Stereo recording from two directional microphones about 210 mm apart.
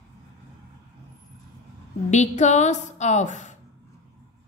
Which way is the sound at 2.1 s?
35° left (ahead or behind).